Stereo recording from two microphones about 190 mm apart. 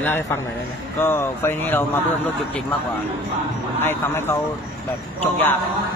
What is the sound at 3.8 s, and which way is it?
Speech, 10° left (ahead or behind).